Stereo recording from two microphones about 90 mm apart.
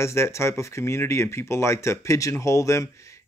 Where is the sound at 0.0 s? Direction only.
30° left (ahead or behind).